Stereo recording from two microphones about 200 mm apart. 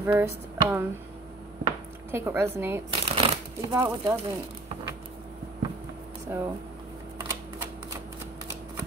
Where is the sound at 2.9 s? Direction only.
30° right (ahead or behind).